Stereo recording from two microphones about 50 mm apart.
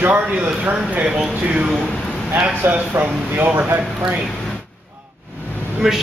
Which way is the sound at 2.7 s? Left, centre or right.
Right.